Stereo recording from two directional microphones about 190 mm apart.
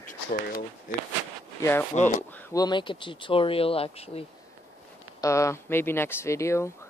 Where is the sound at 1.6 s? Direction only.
10° left (ahead or behind); by 4.3 s 30° left (ahead or behind).